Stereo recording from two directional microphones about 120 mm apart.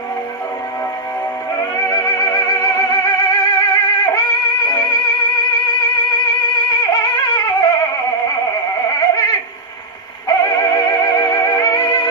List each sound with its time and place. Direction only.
1.6 s music: 30° left (ahead or behind)
6.5 s music: 35° left (ahead or behind)